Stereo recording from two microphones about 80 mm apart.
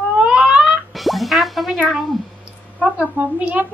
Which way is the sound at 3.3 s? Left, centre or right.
Centre.